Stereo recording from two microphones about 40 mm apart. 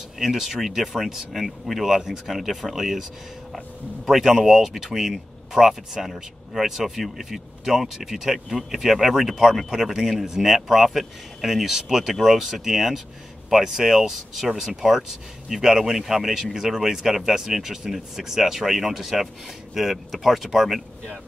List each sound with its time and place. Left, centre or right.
0.2 s speech: centre